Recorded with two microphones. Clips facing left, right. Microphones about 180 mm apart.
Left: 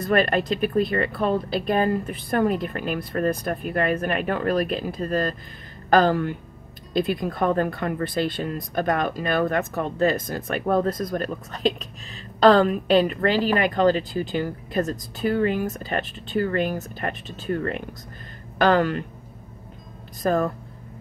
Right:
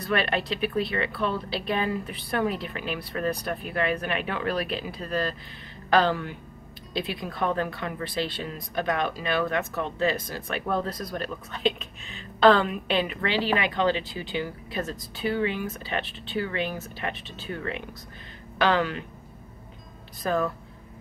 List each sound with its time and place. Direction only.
0.0 s speech: 45° left (ahead or behind)
11.5 s a woman's voice: 40° left (ahead or behind)
20.2 s speech: 40° left (ahead or behind)